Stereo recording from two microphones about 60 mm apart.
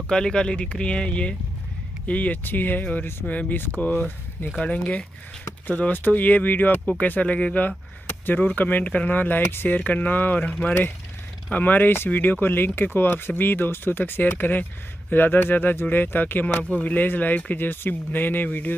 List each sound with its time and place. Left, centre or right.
0.1 s speech: centre
5.7 s speech: left
11.5 s speech: left